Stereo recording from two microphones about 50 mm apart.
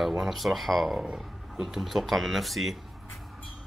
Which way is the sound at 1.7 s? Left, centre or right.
Centre.